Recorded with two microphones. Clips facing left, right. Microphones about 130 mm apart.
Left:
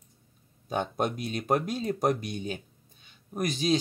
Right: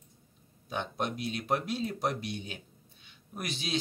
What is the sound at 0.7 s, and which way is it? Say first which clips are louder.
Speech: left 5 dB; 45° left (ahead or behind).